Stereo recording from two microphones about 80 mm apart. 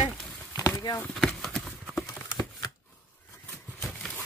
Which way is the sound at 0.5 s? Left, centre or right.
Left.